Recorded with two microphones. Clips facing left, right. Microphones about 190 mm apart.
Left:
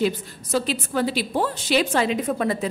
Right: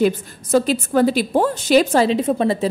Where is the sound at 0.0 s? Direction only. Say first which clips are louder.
Right 5 dB; 50° right (ahead or behind).